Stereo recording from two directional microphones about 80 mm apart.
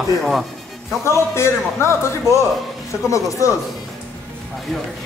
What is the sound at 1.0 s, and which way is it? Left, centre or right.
Speech, left.